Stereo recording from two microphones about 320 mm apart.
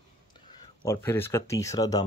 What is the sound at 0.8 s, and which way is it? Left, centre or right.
Speech, centre.